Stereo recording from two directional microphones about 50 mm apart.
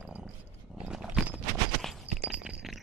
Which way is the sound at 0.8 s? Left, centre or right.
Centre.